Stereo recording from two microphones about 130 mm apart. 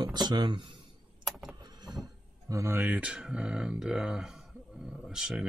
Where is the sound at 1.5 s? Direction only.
30° right (ahead or behind).